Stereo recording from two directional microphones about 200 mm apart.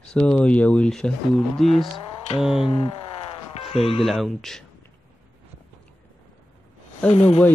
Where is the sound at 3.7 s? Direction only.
25° left (ahead or behind).